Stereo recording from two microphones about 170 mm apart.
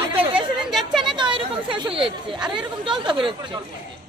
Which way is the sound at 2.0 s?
30° right (ahead or behind).